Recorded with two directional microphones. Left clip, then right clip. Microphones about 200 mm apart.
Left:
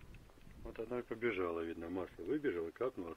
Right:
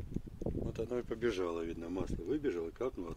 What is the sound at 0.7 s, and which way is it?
Speech, 65° right (ahead or behind).